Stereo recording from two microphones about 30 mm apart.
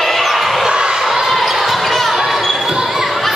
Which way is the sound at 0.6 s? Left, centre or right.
Right.